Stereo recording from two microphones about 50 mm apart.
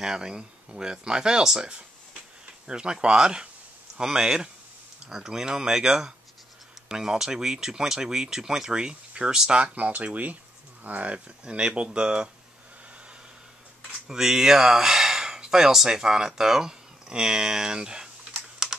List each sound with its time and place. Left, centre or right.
0.0 s speech: centre
9.8 s speech: right
14.0 s speech: centre